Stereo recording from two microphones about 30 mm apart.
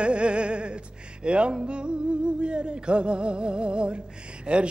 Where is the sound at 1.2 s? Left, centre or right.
Right.